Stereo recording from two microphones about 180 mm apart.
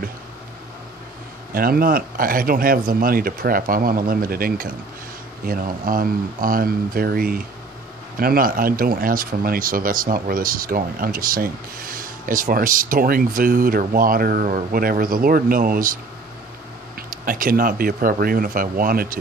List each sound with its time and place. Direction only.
1.5 s speech: 55° right (ahead or behind)
17.1 s speech: 50° right (ahead or behind)